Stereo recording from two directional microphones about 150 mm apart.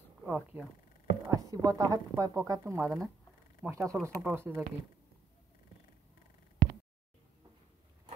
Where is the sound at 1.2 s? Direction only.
20° right (ahead or behind).